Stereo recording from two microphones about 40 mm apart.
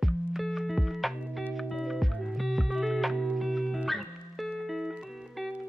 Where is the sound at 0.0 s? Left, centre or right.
Centre.